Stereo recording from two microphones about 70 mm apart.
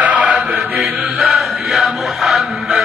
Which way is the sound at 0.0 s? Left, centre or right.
Right.